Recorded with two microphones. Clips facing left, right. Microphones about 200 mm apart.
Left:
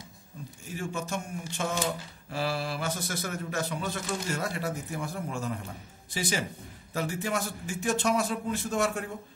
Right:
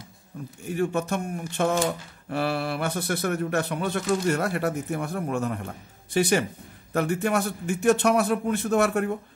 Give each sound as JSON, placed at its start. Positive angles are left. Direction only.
{"t": 0.7, "sound": "speech", "side_deg": -60}